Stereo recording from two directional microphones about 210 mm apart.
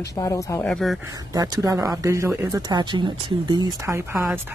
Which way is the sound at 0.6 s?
Centre (ahead or behind).